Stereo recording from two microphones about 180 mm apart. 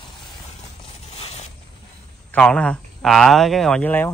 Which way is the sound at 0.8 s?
35° left (ahead or behind).